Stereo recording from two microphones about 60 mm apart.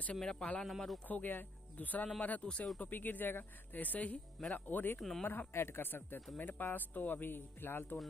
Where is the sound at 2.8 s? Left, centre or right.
Left.